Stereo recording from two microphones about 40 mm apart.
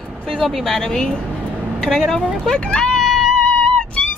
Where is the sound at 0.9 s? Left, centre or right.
Centre.